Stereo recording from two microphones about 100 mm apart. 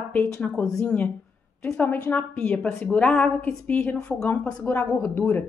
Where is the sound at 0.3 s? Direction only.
10° left (ahead or behind).